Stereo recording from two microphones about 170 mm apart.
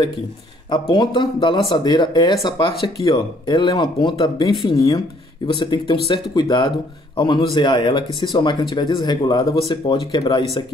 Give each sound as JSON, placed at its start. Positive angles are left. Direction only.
{"t": 0.7, "sound": "speech", "side_deg": 25}